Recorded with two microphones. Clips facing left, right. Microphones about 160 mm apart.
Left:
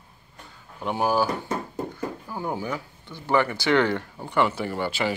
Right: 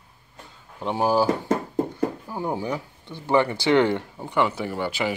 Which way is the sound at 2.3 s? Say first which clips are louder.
Right 2 dB; 25° right (ahead or behind).